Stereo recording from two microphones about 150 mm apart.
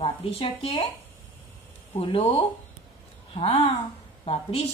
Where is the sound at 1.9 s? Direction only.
40° left (ahead or behind).